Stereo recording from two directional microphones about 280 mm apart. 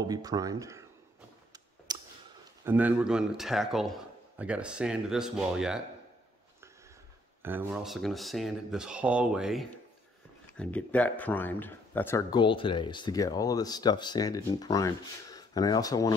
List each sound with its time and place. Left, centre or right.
0.0 s speech: centre
1.9 s clicking: centre
2.6 s a man's voice: centre
7.4 s a man's voice: centre